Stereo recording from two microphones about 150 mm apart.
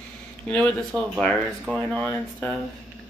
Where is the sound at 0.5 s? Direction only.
5° left (ahead or behind).